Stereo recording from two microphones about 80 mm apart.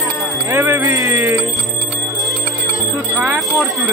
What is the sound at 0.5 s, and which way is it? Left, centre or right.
Music, right.